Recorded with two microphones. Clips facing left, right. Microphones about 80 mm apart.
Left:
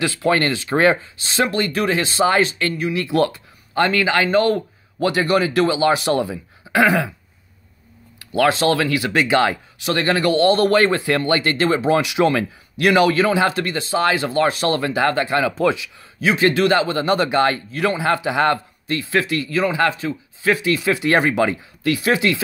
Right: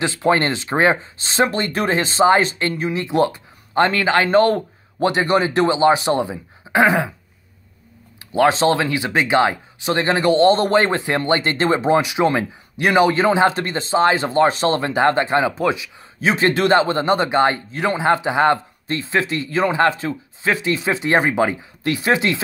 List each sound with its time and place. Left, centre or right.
0.0 s speech: right
1.1 s speech: right; by 3.3 s centre
3.7 s a man's voice: right
8.2 s speech: right
15.5 s speech: centre
16.2 s speech: right